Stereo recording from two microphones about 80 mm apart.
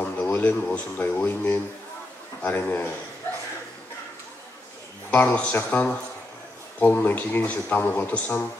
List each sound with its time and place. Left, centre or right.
0.0 s speech: centre
5.1 s speech: centre